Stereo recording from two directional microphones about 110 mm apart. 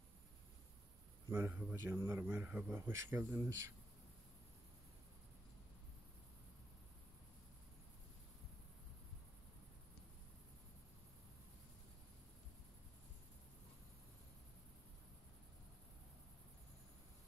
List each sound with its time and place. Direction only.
1.3 s speech: 15° right (ahead or behind)